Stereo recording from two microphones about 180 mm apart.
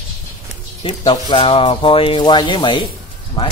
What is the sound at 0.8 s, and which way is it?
Speech, 25° left (ahead or behind).